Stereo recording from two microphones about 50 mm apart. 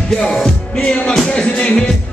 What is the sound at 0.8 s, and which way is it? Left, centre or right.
Music, left.